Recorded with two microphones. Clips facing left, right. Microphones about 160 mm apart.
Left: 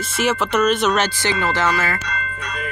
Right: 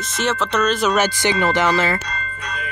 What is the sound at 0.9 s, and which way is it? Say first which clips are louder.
Speech: right 2 dB; 15° right (ahead or behind).